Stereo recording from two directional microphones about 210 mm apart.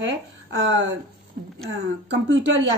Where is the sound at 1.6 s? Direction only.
65° right (ahead or behind).